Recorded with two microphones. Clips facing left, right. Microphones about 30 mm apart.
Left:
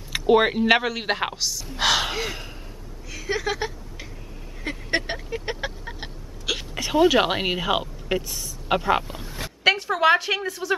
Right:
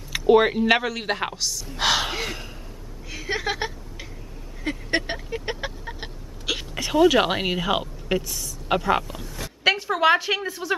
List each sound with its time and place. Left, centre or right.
0.3 s speech: centre
3.1 s a woman's voice: centre
4.6 s vehicle: centre
7.1 s a woman's voice: centre
9.2 s a sound: left
9.6 s a sound: centre
10.4 s a woman's voice: centre